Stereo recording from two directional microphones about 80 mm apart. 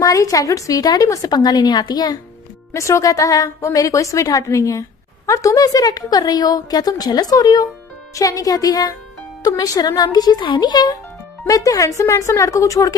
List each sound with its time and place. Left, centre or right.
0.0 s a woman's voice: left
2.7 s a woman's voice: left
10.4 s speech: left
11.4 s a woman's voice: left